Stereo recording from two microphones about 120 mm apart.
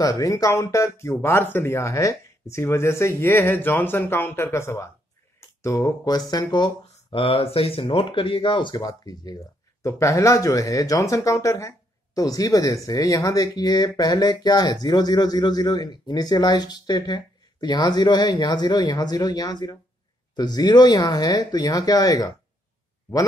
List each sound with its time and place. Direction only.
0.0 s speech: 30° left (ahead or behind)
7.1 s speech: 50° left (ahead or behind); by 22.3 s 30° left (ahead or behind)